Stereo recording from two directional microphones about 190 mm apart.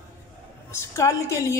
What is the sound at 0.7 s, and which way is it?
Speech, 15° left (ahead or behind).